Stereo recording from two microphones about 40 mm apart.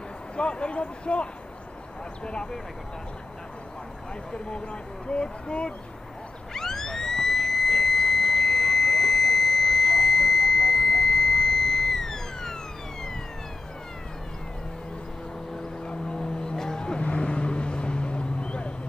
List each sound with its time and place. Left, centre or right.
0.4 s speech: left
5.0 s speech: left
6.5 s police car: centre
15.8 s vehicle: left